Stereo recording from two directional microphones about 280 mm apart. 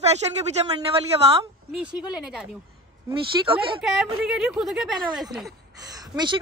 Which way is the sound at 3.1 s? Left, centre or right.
Centre.